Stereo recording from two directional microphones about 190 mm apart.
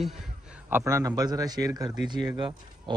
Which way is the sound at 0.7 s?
10° right (ahead or behind).